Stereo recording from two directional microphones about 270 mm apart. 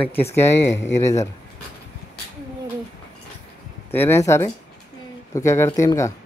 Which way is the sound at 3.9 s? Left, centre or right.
Centre.